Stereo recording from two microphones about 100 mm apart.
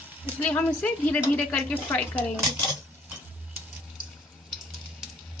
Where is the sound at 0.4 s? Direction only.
15° left (ahead or behind).